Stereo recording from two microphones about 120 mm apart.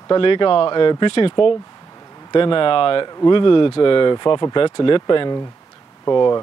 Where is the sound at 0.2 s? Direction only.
45° left (ahead or behind).